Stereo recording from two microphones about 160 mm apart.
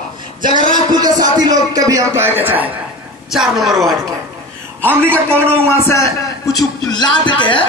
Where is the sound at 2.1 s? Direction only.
15° right (ahead or behind).